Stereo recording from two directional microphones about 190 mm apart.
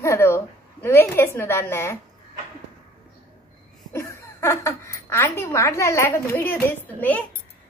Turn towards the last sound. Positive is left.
turn(degrees=10)  # may be behind; listen again after turning